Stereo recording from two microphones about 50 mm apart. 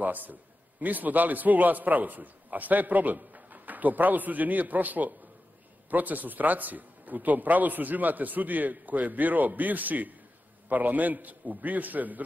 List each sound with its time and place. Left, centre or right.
0.0 s a man's voice: right